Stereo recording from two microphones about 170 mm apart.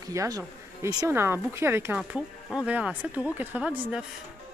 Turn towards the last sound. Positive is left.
turn(degrees=-10)  # may be behind; listen again after turning